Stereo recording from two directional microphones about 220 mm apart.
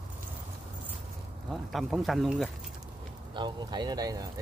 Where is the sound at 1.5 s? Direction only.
Centre (ahead or behind).